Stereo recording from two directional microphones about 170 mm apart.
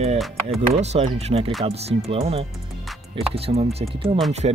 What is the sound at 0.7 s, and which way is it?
Speech, 35° right (ahead or behind).